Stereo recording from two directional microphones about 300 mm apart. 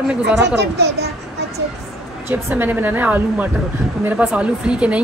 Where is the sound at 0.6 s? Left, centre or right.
Right.